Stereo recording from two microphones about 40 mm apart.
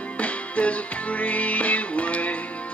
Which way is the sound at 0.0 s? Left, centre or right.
Left.